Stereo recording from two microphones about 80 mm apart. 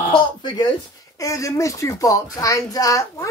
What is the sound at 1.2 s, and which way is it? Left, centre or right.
Speech, left.